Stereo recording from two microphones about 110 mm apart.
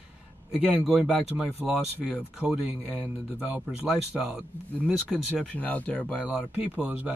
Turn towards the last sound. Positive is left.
turn(degrees=-15)  # may be behind; listen again after turning